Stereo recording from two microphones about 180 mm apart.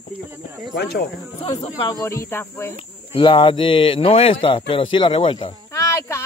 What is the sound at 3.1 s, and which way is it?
A man's voice, 25° left (ahead or behind).